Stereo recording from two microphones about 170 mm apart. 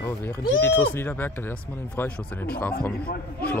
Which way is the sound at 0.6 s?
15° left (ahead or behind).